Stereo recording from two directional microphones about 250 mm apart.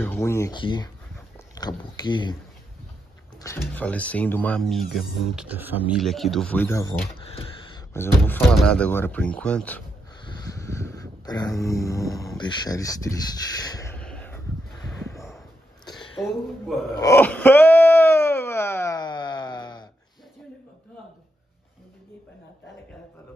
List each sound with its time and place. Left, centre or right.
0.0 s speech: centre
3.3 s speech: centre
7.9 s speech: centre
10.2 s a sound: centre
17.0 s wail: centre